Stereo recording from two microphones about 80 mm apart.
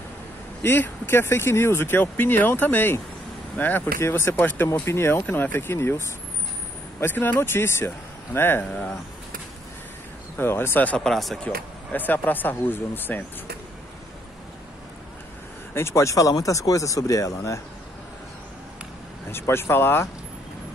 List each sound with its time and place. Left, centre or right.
0.6 s speech: left
10.4 s speech: left
11.1 s speech: centre
11.4 s speech: left
15.7 s speech: left
19.3 s speech: left